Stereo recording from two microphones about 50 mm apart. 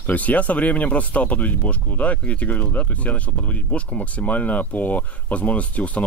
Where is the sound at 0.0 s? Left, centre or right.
Left.